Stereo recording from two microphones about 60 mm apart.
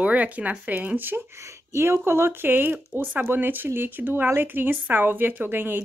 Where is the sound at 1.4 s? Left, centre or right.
Right.